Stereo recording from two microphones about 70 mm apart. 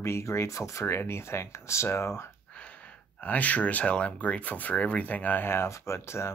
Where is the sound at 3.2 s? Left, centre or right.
Left.